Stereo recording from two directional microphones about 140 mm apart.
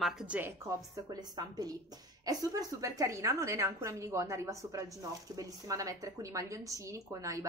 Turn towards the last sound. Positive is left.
turn(degrees=-20)  # may be behind; listen again after turning